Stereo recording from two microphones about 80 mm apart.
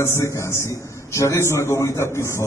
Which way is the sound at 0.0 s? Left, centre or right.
Left.